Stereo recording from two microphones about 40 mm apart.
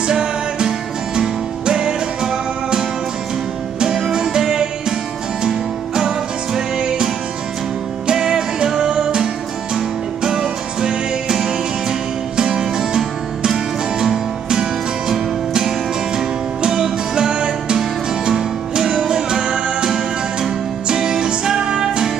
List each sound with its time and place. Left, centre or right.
0.0 s music: centre
3.8 s music: centre
8.1 s music: centre
17.7 s music: centre
18.9 s music: centre